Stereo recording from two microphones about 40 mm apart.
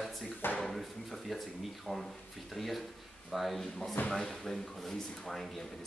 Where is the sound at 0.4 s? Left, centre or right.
Left.